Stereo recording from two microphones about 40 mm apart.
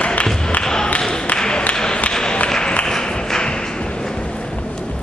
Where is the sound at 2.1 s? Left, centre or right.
Centre.